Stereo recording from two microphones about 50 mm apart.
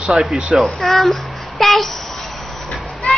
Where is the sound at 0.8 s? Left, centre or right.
Centre.